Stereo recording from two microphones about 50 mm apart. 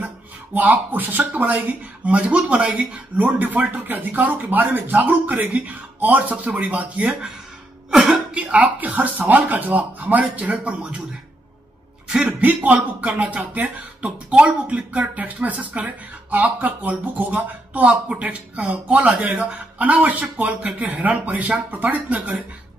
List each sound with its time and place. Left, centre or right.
0.6 s a man's voice: right
3.4 s speech: right
7.9 s a sound: centre
8.4 s a man's voice: right
8.7 s speech: right
12.2 s a man's voice: right